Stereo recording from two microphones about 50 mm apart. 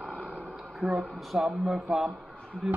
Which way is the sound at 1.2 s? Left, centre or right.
Centre.